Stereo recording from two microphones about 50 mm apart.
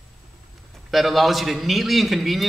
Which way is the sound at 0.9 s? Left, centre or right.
Centre.